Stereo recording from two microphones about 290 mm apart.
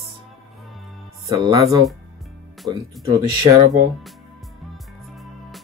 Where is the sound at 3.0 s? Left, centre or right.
Centre.